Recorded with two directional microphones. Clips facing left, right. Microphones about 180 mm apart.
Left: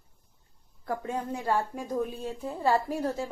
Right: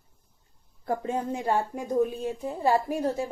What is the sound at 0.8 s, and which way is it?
A woman's voice, 25° right (ahead or behind).